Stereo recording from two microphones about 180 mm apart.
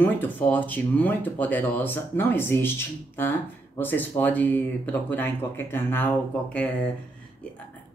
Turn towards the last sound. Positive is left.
turn(degrees=10)  # may be behind; listen again after turning